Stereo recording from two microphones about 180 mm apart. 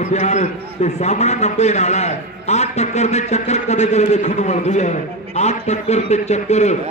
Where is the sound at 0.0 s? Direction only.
40° left (ahead or behind).